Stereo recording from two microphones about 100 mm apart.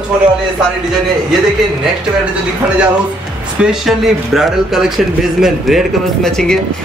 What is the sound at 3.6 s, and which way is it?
Speech, 5° right (ahead or behind).